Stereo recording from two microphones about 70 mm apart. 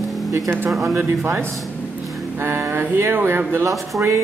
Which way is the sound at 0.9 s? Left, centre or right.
Right.